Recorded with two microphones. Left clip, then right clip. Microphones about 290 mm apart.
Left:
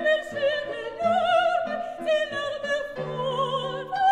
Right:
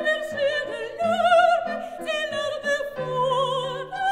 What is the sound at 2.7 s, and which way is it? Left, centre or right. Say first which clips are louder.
Opera: right 4 dB; right.